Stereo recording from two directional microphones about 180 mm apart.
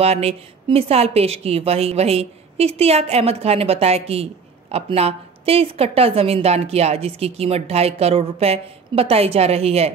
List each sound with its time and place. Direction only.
0.0 s a woman's voice: 35° right (ahead or behind)